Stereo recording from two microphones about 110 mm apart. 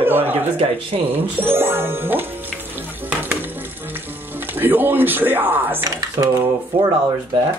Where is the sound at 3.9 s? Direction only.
20° right (ahead or behind).